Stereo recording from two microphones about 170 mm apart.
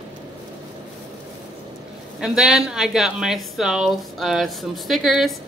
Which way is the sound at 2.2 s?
5° right (ahead or behind).